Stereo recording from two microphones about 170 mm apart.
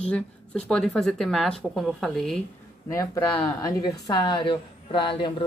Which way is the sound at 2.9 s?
20° left (ahead or behind).